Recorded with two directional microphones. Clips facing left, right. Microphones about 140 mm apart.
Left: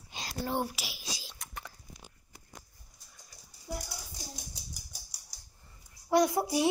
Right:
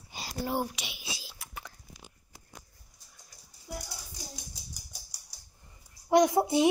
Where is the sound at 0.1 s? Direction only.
10° right (ahead or behind).